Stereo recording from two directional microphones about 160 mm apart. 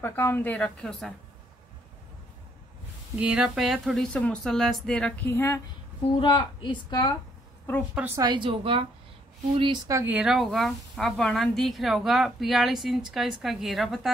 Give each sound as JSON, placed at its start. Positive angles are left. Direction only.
{"t": 0.0, "sound": "a woman's voice", "side_deg": 15}
{"t": 3.2, "sound": "speech", "side_deg": -5}
{"t": 5.2, "sound": "a woman's voice", "side_deg": 15}
{"t": 6.1, "sound": "a woman's voice", "side_deg": 30}
{"t": 8.2, "sound": "a woman's voice", "side_deg": -30}
{"t": 9.8, "sound": "speech", "side_deg": -15}